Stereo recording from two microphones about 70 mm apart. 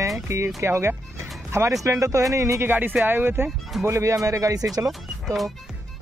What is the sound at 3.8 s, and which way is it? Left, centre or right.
Speech, right.